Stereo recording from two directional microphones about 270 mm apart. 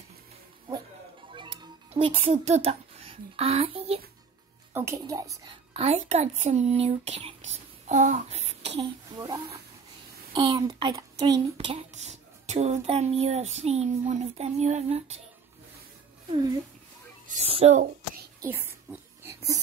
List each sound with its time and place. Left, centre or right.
1.3 s music: centre
4.7 s speech: centre
17.3 s speech: right
18.4 s oink: centre